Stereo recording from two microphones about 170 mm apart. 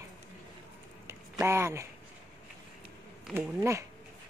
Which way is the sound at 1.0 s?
15° right (ahead or behind).